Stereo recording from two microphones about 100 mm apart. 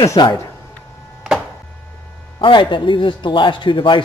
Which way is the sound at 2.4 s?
55° left (ahead or behind).